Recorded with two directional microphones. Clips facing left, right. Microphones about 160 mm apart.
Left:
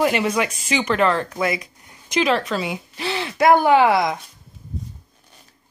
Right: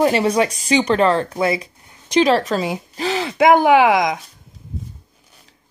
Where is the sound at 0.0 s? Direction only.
35° right (ahead or behind).